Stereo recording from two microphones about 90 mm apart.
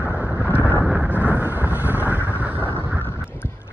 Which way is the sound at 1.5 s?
20° right (ahead or behind).